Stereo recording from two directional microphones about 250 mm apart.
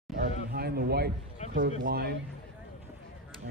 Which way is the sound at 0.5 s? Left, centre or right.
Right.